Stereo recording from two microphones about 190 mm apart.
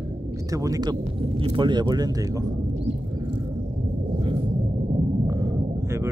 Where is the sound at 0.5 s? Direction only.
20° right (ahead or behind).